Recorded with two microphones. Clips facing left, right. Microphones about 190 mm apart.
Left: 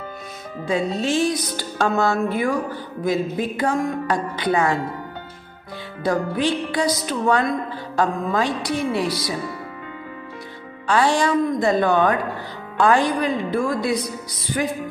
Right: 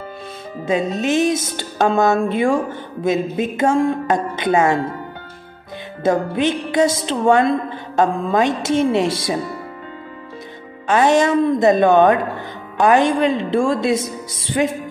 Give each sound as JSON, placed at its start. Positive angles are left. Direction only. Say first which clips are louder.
{"t": 0.7, "sound": "speech", "louder": "right 3 dB", "side_deg": -20}
{"t": 6.0, "sound": "speech", "louder": "right 4 dB", "side_deg": -20}
{"t": 10.9, "sound": "speech", "louder": "right 4 dB", "side_deg": -20}